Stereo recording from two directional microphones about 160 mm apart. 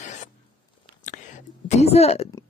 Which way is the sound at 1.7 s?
40° left (ahead or behind).